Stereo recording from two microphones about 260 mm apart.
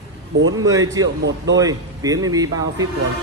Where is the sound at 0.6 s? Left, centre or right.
Centre.